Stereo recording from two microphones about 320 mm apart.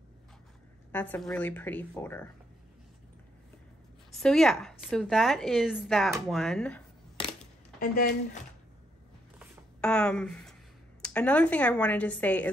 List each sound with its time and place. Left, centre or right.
0.9 s speech: centre
4.1 s speech: centre
7.8 s speech: left
9.4 s a sound: centre
11.0 s speech: centre